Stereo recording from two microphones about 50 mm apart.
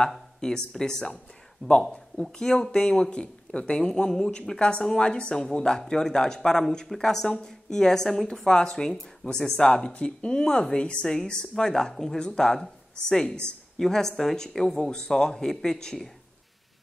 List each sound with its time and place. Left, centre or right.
0.4 s speech: centre
2.3 s speech: centre